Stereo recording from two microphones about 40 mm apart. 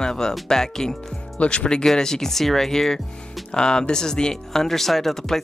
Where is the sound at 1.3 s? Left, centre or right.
Left.